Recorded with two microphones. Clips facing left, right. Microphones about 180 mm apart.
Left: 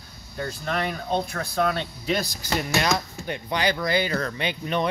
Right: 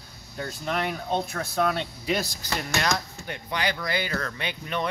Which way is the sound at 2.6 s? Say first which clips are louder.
Left 2 dB; 10° left (ahead or behind).